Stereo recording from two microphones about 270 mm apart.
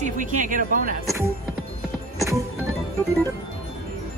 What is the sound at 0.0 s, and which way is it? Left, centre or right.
Speech, right.